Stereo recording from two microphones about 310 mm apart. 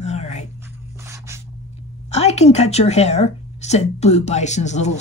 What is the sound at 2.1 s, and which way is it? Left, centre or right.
A woman's voice, left.